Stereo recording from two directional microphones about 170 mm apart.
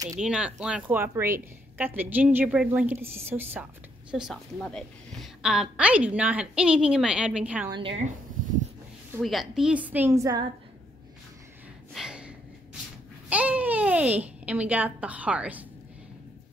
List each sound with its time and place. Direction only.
0.2 s a woman's voice: 5° right (ahead or behind)
4.1 s a woman's voice: 5° right (ahead or behind)
7.7 s speech: 30° right (ahead or behind)
9.2 s a woman's voice: centre (ahead or behind); by 10.4 s 20° right (ahead or behind)
11.9 s gasp: 5° right (ahead or behind)
13.3 s a woman's voice: 10° right (ahead or behind)